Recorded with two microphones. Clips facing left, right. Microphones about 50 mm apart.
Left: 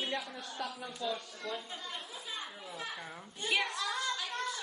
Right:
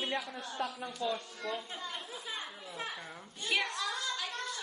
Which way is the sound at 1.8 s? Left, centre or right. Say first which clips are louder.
Right 1 dB; right.